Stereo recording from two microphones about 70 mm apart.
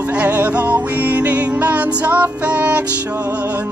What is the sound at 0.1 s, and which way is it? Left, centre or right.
Music, right.